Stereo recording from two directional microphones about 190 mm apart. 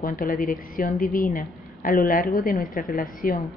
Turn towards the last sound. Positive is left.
turn(degrees=50)  # may be behind; listen again after turning